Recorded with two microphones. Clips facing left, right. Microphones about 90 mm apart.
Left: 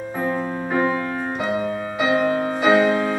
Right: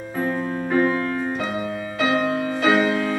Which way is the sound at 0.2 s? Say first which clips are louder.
Even; 10° left (ahead or behind).